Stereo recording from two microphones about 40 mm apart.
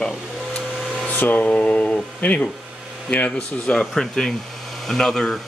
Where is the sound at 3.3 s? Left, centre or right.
Centre.